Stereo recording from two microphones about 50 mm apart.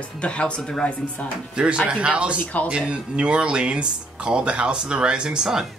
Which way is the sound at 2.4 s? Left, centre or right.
Left.